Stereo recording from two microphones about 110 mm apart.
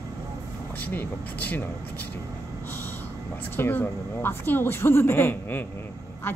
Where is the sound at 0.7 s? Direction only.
15° left (ahead or behind).